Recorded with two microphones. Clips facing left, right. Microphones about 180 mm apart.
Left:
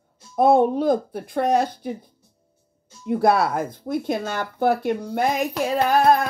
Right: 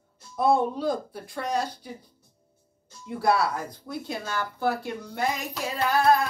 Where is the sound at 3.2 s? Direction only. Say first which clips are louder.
Left 4 dB; 20° left (ahead or behind).